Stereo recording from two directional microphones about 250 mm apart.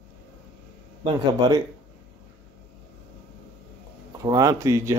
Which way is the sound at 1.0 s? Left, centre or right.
Centre.